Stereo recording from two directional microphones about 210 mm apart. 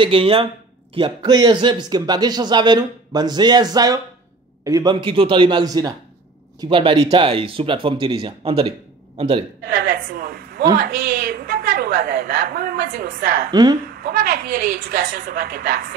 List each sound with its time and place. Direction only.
0.0 s speech: 25° right (ahead or behind)
9.7 s a sound: 45° right (ahead or behind)
10.8 s a woman's voice: 45° right (ahead or behind)
13.5 s speech: 20° right (ahead or behind)
14.0 s a woman's voice: 45° right (ahead or behind)